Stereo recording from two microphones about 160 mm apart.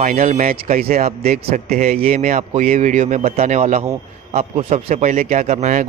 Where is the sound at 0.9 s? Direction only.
45° right (ahead or behind).